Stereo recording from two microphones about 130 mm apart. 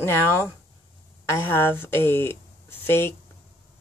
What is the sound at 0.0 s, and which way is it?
Speech, 20° left (ahead or behind).